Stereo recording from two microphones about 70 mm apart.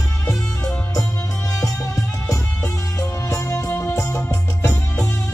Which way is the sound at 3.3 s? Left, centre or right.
Left.